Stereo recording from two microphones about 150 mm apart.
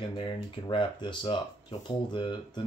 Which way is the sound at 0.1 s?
35° left (ahead or behind).